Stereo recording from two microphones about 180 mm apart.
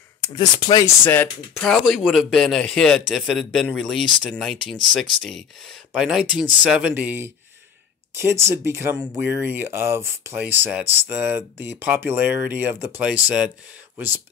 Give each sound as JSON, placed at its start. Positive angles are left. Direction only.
{"t": 0.3, "sound": "speech", "side_deg": 25}
{"t": 1.5, "sound": "speech", "side_deg": 0}